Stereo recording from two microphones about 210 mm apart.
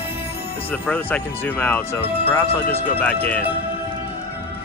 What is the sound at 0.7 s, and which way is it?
Speech, 10° left (ahead or behind).